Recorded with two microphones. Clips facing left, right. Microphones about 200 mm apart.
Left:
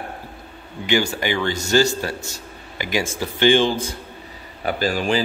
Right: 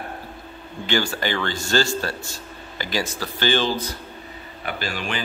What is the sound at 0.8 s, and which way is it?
A man's voice, 15° left (ahead or behind).